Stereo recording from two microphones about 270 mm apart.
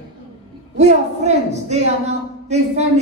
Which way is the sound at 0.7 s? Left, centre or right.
Right.